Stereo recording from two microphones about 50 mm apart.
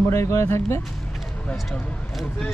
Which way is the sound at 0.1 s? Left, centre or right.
Left.